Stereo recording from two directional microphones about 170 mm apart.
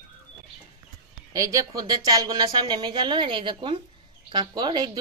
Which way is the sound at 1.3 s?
20° right (ahead or behind).